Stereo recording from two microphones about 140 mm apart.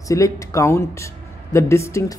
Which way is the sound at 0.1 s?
20° left (ahead or behind).